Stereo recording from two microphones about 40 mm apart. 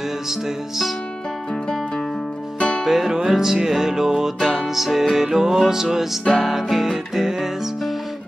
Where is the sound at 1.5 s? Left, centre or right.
Centre.